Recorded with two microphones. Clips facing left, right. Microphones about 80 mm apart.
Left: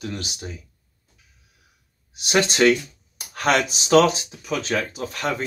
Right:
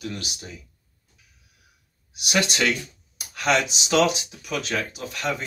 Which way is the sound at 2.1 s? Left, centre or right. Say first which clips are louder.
Left 3 dB; left.